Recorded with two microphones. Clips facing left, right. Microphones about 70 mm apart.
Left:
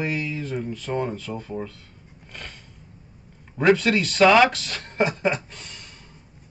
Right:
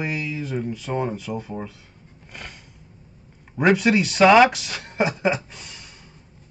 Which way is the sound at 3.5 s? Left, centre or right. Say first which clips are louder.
Right 1 dB; centre.